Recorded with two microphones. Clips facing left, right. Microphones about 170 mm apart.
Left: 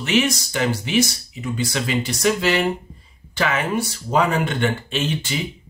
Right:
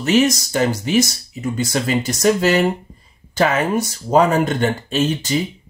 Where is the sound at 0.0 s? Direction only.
40° right (ahead or behind).